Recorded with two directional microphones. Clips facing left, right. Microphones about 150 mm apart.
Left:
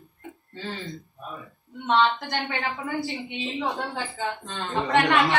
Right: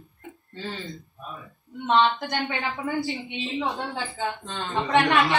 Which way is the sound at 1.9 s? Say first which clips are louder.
Right 1 dB; 20° right (ahead or behind).